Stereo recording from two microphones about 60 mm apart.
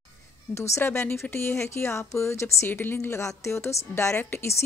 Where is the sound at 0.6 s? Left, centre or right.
Left.